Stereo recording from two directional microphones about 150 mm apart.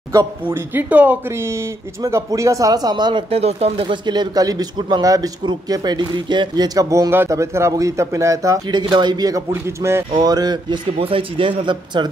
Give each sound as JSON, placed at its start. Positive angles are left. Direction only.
{"t": 0.1, "sound": "speech", "side_deg": -20}
{"t": 9.5, "sound": "speech", "side_deg": -15}
{"t": 10.2, "sound": "a man's voice", "side_deg": -25}